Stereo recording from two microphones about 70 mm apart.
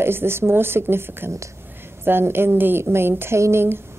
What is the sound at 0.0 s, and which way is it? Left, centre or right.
A woman's voice, right.